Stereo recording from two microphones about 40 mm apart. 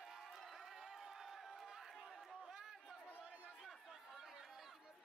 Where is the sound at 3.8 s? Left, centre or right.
Centre.